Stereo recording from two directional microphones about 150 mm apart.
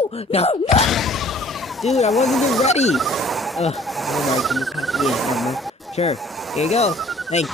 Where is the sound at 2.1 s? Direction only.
Centre (ahead or behind).